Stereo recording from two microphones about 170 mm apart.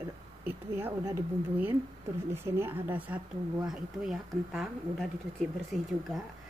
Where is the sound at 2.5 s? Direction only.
15° right (ahead or behind).